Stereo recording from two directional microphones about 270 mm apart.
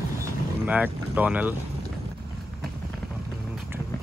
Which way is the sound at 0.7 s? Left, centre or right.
Centre.